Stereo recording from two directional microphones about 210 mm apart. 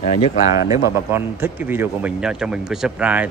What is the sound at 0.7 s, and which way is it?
Speech, 10° right (ahead or behind).